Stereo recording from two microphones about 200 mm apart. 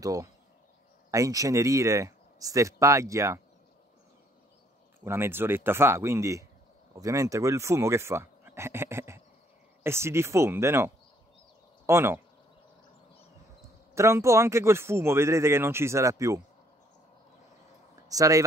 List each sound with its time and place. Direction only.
0.0 s speech: 15° right (ahead or behind)
5.0 s speech: 10° right (ahead or behind)
13.9 s speech: 15° right (ahead or behind)
18.0 s speech: 15° right (ahead or behind)